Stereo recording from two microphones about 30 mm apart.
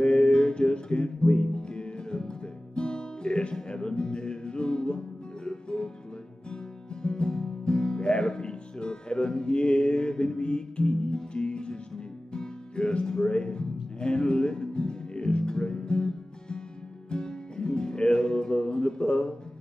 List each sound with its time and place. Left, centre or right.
0.0 s music: left